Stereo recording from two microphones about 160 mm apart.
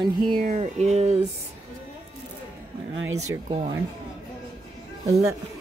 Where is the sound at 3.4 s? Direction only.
35° right (ahead or behind).